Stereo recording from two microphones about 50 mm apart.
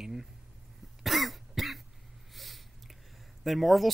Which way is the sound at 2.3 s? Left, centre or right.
Centre.